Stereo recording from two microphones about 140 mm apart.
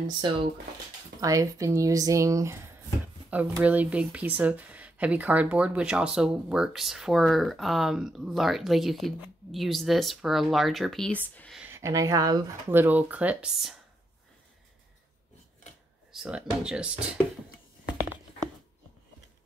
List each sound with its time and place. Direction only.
0.2 s speech: 35° right (ahead or behind)
1.2 s speech: 25° right (ahead or behind)
3.3 s speech: 10° right (ahead or behind); by 11.5 s 10° left (ahead or behind)
11.7 s speech: 20° right (ahead or behind)
12.6 s speech: 15° right (ahead or behind)
16.2 s speech: 5° right (ahead or behind)